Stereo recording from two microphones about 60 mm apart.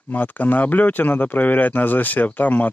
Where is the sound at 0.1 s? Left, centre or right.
Left.